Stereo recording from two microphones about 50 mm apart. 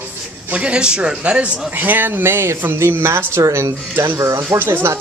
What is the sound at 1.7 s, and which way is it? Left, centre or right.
Speech, right.